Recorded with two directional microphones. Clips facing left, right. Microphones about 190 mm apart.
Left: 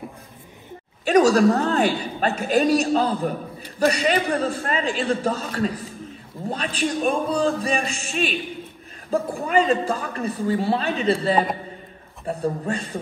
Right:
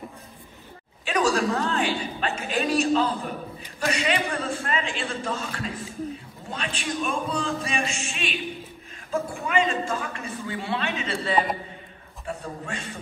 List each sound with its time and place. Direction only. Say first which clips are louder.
1.0 s a woman's voice: left 8 dB; 40° left (ahead or behind)